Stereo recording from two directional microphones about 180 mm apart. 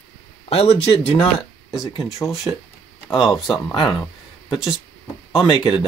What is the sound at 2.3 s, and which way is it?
Speech, centre (ahead or behind).